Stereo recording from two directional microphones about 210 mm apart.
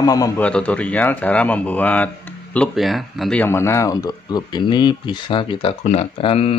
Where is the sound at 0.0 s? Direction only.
15° left (ahead or behind).